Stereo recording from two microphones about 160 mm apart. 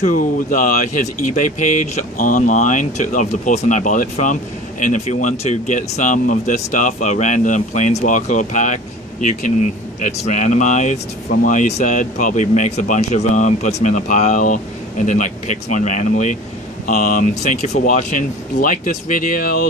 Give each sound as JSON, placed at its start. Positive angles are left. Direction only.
{"t": 0.0, "sound": "speech", "side_deg": 55}